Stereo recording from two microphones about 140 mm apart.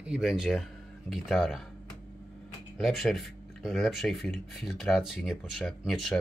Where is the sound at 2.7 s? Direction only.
Centre (ahead or behind).